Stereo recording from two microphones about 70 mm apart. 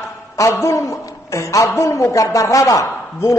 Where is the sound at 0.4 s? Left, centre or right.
Left.